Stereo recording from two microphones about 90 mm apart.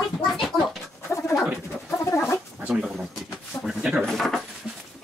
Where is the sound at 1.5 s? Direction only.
30° left (ahead or behind).